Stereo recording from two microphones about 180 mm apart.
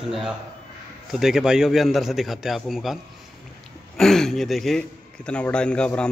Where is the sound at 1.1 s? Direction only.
Centre (ahead or behind).